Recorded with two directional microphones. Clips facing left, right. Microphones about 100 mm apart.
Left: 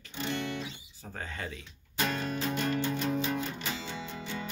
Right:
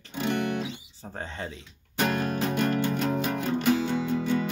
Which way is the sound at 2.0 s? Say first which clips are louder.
Right 5 dB; 60° right (ahead or behind).